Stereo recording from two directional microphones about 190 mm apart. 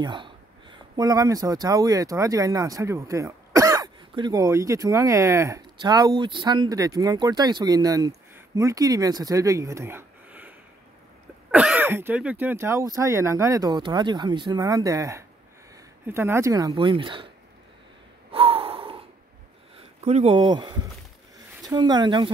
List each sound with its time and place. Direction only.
0.0 s speech: 25° right (ahead or behind)
11.5 s speech: 5° right (ahead or behind); by 17.3 s 25° right (ahead or behind)
18.3 s gasp: 30° right (ahead or behind)
20.0 s speech: 35° right (ahead or behind)
20.3 s speech: 25° right (ahead or behind)